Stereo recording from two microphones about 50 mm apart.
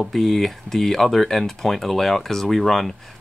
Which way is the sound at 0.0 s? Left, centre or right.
Centre.